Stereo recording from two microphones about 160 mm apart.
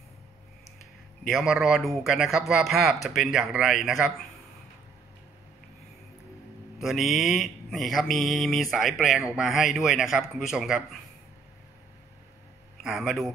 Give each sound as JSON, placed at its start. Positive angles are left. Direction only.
{"t": 1.2, "sound": "speech", "side_deg": 0}
{"t": 6.8, "sound": "speech", "side_deg": 0}
{"t": 12.8, "sound": "speech", "side_deg": 0}